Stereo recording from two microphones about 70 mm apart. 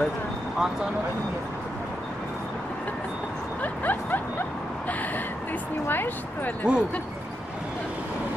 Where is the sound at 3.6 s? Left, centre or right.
Left.